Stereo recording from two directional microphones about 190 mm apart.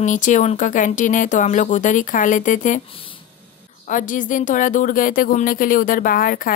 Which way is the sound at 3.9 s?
45° left (ahead or behind).